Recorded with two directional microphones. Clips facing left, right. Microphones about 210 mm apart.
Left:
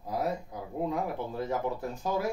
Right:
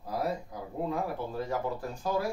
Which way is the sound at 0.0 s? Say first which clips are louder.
Left 1 dB; 20° left (ahead or behind).